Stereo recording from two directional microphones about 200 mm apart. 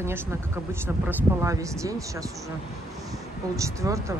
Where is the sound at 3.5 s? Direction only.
15° right (ahead or behind).